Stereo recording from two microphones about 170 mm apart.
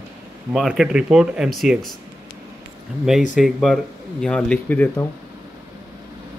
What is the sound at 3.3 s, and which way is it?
Speech, centre (ahead or behind).